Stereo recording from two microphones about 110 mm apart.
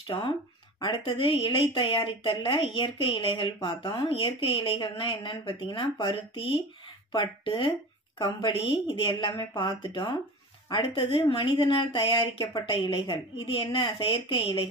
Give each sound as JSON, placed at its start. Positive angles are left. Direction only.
{"t": 0.0, "sound": "speech", "side_deg": 50}
{"t": 3.5, "sound": "speech", "side_deg": 40}
{"t": 10.7, "sound": "speech", "side_deg": 55}